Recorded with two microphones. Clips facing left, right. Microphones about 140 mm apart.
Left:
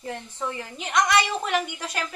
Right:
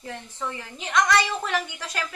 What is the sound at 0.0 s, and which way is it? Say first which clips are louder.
A woman's voice: left 2 dB; 15° left (ahead or behind).